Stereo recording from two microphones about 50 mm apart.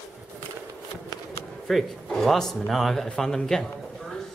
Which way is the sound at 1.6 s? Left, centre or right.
Centre.